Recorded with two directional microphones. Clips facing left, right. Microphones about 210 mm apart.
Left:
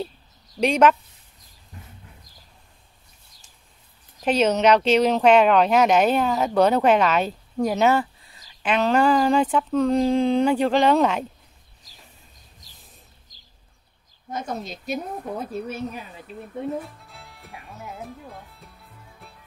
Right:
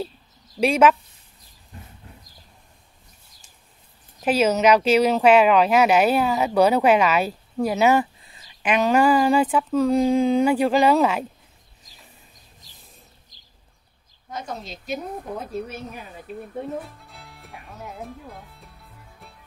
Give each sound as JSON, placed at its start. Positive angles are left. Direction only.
{"t": 0.6, "sound": "speech", "side_deg": -5}
{"t": 4.2, "sound": "speech", "side_deg": -5}
{"t": 14.3, "sound": "a woman's voice", "side_deg": 50}
{"t": 16.3, "sound": "speech", "side_deg": -50}
{"t": 16.8, "sound": "music", "side_deg": 0}